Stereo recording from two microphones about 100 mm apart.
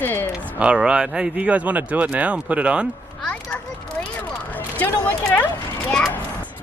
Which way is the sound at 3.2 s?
10° left (ahead or behind).